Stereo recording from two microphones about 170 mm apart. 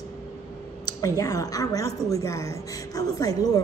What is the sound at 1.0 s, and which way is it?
A woman's voice, 20° left (ahead or behind).